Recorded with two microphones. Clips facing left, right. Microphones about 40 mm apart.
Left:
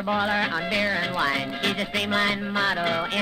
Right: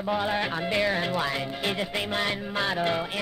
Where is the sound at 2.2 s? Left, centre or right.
Centre.